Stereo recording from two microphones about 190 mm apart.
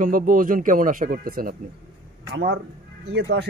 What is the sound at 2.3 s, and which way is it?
Speech, 65° right (ahead or behind).